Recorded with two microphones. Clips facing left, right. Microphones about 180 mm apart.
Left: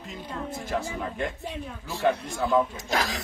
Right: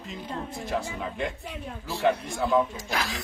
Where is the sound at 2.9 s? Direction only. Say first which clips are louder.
Left 3 dB; 35° left (ahead or behind).